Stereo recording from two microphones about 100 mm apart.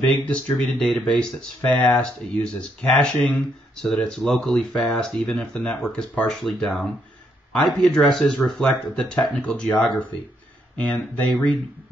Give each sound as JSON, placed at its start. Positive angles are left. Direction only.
{"t": 0.0, "sound": "speech", "side_deg": 15}